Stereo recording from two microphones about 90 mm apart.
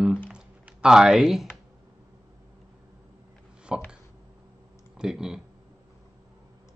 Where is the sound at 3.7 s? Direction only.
10° right (ahead or behind).